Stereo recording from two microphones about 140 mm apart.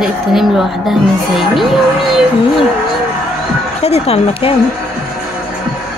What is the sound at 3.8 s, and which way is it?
Speech, 45° left (ahead or behind).